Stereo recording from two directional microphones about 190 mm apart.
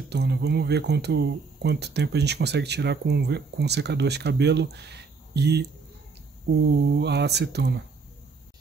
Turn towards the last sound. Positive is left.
turn(degrees=-60)  # may be behind; listen again after turning